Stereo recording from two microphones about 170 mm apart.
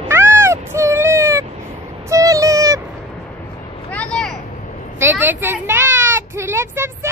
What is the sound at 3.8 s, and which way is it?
Vehicle, 5° left (ahead or behind).